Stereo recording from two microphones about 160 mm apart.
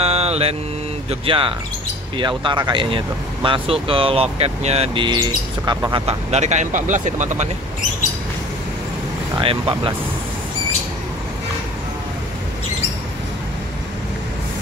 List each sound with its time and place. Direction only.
0.0 s mantra: 40° right (ahead or behind)
1.2 s speech: 35° right (ahead or behind); by 7.4 s 50° right (ahead or behind)
9.4 s speech: 35° right (ahead or behind)